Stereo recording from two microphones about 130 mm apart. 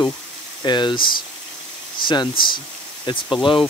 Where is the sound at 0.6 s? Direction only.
35° left (ahead or behind).